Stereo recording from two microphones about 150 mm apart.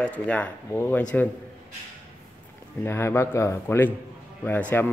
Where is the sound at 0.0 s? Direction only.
10° left (ahead or behind).